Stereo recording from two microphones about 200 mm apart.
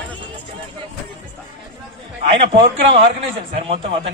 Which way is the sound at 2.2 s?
25° right (ahead or behind).